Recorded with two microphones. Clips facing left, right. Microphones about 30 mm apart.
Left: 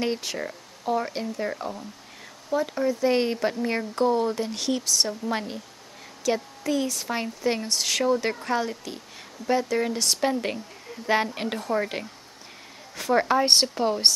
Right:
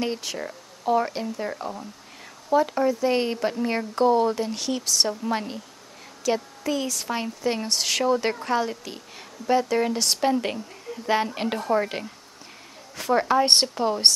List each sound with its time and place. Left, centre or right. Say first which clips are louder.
0.0 s speech: left 1 dB; centre
2.5 s speech: right 4 dB; centre
3.0 s speech: even; centre
4.5 s speech: left 1 dB; centre
4.8 s speech: right 4 dB; centre
6.2 s a woman's voice: right 1 dB; centre
7.6 s a woman's voice: right 1 dB; centre